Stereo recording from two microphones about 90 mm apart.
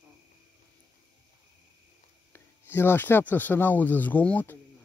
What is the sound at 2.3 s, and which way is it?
Speech, 25° left (ahead or behind).